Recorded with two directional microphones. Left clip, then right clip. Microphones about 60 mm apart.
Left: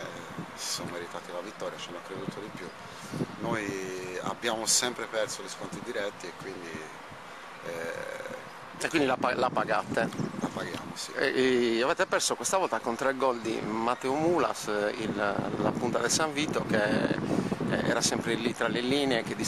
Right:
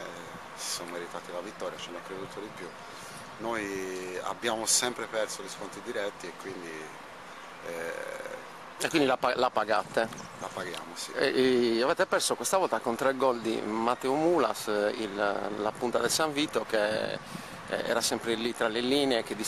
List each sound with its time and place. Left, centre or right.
0.7 s speech: centre
3.4 s speech: centre
7.6 s speech: centre
8.8 s speech: right
11.1 s speech: right
12.4 s speech: right
12.8 s speech: right